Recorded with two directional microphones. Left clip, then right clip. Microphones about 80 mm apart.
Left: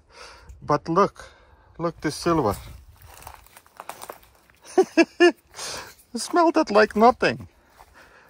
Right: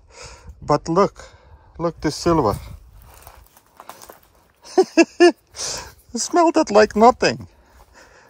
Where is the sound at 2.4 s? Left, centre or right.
Right.